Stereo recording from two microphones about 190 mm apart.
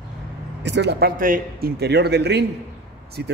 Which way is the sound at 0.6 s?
65° right (ahead or behind).